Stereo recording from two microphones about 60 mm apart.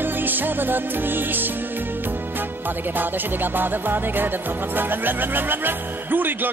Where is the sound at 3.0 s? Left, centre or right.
Right.